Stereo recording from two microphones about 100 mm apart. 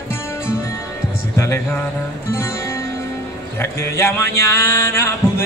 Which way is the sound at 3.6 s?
25° left (ahead or behind).